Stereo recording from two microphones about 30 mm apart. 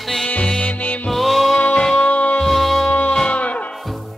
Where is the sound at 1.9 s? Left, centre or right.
Left.